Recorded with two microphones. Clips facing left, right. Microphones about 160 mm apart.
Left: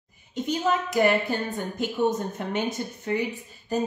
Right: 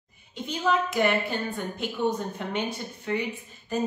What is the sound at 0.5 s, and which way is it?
A woman's voice, 40° left (ahead or behind).